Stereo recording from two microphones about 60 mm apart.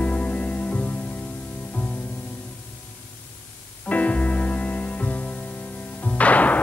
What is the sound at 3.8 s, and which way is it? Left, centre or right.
Music, left.